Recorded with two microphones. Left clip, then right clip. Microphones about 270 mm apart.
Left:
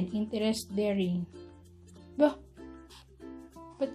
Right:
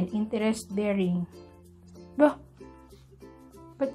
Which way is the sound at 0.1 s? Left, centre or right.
Centre.